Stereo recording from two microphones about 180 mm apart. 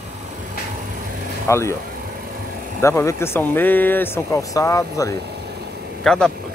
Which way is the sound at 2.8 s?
15° left (ahead or behind).